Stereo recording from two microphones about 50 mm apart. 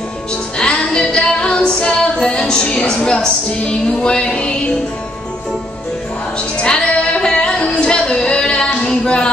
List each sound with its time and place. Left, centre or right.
0.6 s female singing: left
6.6 s music: centre
8.8 s a sound: centre